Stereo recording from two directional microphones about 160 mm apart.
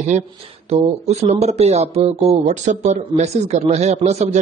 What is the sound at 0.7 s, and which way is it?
Speech, 40° right (ahead or behind).